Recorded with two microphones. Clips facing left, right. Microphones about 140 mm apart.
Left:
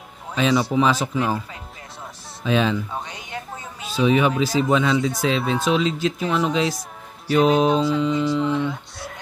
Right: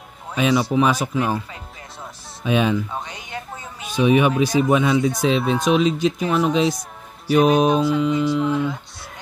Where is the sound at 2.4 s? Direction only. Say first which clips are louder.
Right 1 dB; 15° right (ahead or behind).